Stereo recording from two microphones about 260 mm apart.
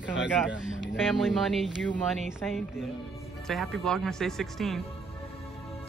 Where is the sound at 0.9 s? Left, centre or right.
Centre.